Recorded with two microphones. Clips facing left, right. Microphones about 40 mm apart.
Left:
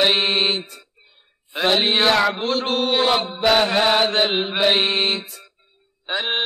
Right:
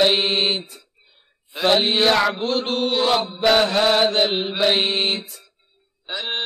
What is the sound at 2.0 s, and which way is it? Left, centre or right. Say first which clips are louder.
Mantra: even; centre.